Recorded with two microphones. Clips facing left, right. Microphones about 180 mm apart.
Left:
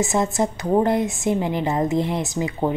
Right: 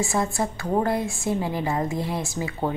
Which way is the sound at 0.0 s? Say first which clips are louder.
Left 4 dB; 20° left (ahead or behind).